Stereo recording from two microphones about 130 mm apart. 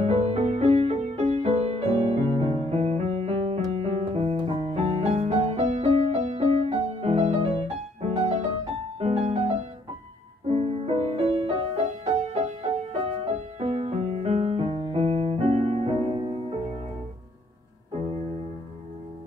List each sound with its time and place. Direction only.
0.0 s music: 55° right (ahead or behind)